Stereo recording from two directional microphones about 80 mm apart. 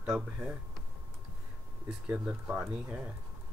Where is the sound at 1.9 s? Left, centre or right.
Centre.